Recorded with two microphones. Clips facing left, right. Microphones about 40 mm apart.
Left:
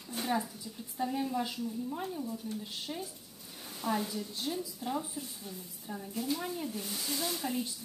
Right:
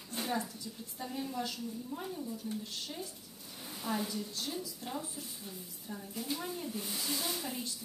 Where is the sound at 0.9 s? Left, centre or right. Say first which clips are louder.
Left 6 dB; centre.